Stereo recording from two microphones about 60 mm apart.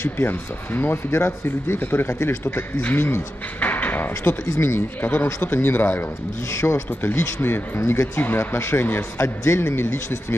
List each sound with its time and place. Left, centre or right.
0.0 s speech: left
3.6 s a sound: left
4.2 s speech: left
5.0 s speech: left
6.5 s a man's voice: left
7.4 s speech: left